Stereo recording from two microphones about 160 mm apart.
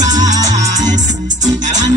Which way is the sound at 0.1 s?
20° right (ahead or behind).